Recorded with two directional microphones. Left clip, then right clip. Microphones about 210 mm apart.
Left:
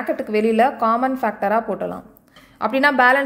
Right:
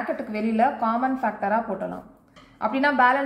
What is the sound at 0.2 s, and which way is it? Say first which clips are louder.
A woman's voice: left 7 dB; 50° left (ahead or behind).